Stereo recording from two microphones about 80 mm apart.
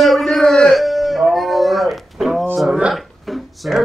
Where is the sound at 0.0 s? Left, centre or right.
Centre.